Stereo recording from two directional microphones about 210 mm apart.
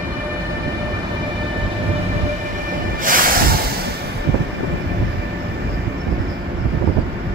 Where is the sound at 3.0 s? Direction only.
40° right (ahead or behind).